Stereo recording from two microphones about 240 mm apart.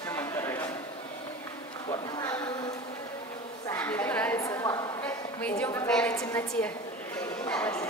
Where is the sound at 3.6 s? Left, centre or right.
Centre.